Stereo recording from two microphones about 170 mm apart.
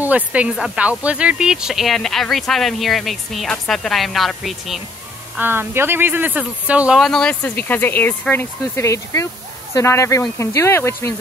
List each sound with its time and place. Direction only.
0.0 s speech: 10° right (ahead or behind)
5.4 s speech: 10° right (ahead or behind); by 11.1 s 15° left (ahead or behind)